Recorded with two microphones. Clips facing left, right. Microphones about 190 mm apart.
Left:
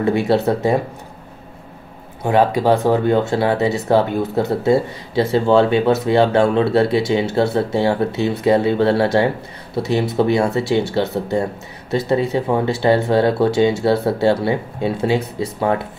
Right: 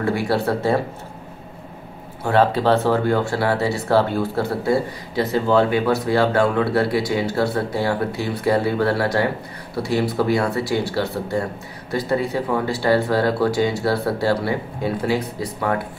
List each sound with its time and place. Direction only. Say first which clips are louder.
0.0 s speech: left 4 dB; 20° left (ahead or behind)
2.2 s speech: left 2 dB; 15° left (ahead or behind)